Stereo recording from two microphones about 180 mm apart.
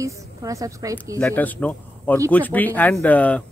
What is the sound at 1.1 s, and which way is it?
Speech, 10° left (ahead or behind).